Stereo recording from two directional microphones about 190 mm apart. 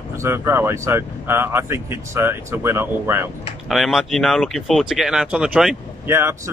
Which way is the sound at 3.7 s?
Centre (ahead or behind).